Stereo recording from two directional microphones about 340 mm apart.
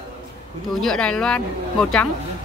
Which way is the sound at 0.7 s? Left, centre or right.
Centre.